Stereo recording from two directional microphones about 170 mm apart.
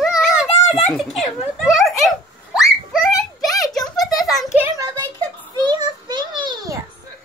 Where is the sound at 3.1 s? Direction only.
20° left (ahead or behind).